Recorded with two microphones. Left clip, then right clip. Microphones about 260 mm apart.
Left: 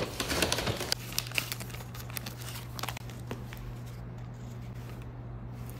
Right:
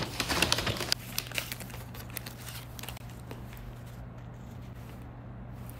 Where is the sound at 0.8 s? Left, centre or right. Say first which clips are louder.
Right 1 dB; centre.